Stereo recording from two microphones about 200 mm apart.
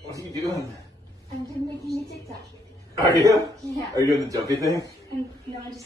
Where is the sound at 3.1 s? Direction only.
15° right (ahead or behind).